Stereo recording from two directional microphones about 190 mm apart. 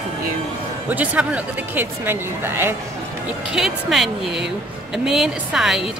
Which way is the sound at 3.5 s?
Centre (ahead or behind).